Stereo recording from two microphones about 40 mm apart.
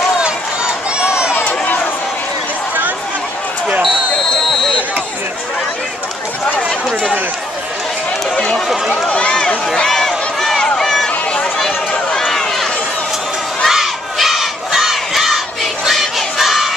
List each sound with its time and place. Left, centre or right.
0.2 s run: right
9.1 s run: left
9.8 s a sound: centre
11.5 s chatter: centre
12.2 s run: centre
13.7 s crowd: centre